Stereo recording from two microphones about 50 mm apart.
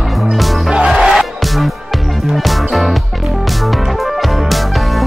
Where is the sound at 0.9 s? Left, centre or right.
Centre.